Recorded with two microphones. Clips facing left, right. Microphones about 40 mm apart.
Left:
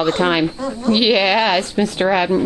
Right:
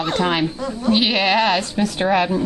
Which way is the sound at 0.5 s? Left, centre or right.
Centre.